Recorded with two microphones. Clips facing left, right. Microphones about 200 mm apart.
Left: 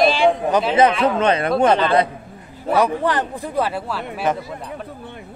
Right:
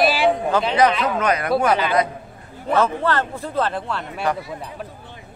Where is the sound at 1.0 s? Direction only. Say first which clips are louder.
Left 4 dB; 30° left (ahead or behind).